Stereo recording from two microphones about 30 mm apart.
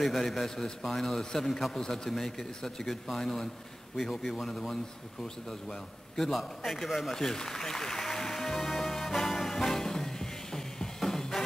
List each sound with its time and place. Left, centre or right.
0.0 s a man's voice: centre
4.1 s a man's voice: centre
5.2 s a man's voice: centre
6.3 s a man's voice: centre
7.2 s music: centre